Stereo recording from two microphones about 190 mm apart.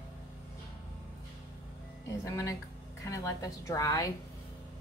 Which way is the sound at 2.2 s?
15° left (ahead or behind).